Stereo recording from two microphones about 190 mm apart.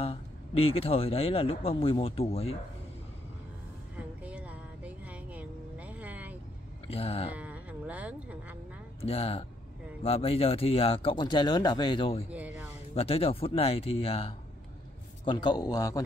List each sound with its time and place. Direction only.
0.0 s speech: 30° left (ahead or behind)
4.2 s music: 5° right (ahead or behind)
6.9 s speech: 30° left (ahead or behind)
7.3 s livestock: 5° right (ahead or behind)
9.0 s speech: 30° left (ahead or behind)
12.3 s a sound: 5° right (ahead or behind)
12.9 s speech: 30° left (ahead or behind)